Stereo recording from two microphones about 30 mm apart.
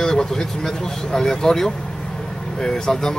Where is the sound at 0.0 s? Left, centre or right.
Centre.